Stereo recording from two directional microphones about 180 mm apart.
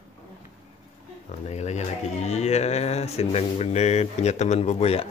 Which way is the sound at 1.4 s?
40° left (ahead or behind).